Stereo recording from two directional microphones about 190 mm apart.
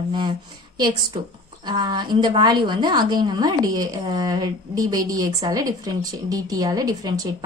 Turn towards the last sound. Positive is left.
turn(degrees=-20)  # may be behind; listen again after turning